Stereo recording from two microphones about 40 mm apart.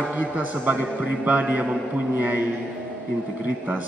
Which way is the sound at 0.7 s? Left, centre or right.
Right.